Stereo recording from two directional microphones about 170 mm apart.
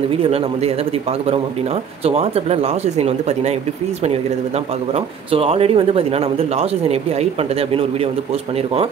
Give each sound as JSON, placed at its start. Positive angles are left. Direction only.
{"t": 0.1, "sound": "speech", "side_deg": -35}
{"t": 2.0, "sound": "speech", "side_deg": -35}
{"t": 4.9, "sound": "speech", "side_deg": -35}